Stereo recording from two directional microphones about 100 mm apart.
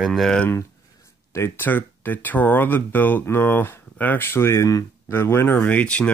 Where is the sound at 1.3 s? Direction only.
25° left (ahead or behind).